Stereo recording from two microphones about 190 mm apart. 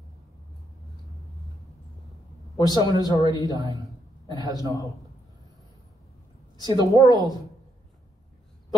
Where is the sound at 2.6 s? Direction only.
20° right (ahead or behind).